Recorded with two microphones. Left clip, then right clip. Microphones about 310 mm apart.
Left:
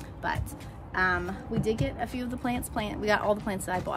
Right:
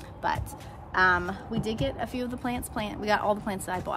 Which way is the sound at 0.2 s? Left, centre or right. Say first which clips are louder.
Right 3 dB; centre.